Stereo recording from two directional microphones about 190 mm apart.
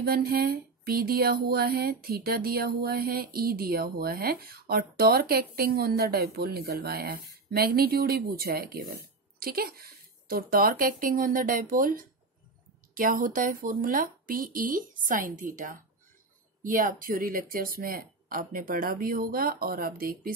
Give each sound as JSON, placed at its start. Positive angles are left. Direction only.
{"t": 0.0, "sound": "speech", "side_deg": -50}